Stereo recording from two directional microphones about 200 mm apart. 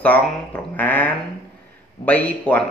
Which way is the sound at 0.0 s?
10° left (ahead or behind).